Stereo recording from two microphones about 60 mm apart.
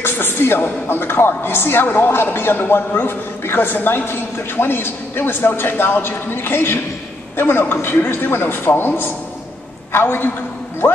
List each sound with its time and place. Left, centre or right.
0.0 s speech: left